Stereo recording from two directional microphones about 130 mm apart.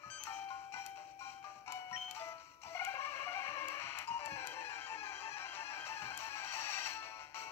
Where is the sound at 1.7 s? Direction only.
20° left (ahead or behind).